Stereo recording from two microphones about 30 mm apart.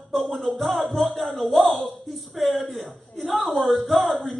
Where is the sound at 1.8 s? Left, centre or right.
Centre.